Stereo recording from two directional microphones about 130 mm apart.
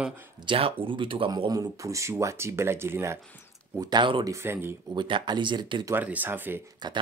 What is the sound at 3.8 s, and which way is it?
Speech, 35° right (ahead or behind).